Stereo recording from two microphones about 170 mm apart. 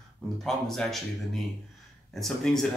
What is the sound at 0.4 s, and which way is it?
A man's voice, centre (ahead or behind).